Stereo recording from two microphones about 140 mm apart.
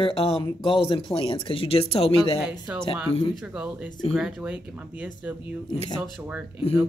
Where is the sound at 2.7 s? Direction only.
5° right (ahead or behind).